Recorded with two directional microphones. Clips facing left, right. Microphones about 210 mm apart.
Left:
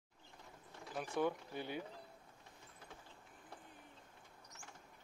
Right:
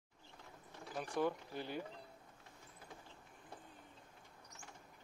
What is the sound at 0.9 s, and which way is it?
Speech, centre (ahead or behind).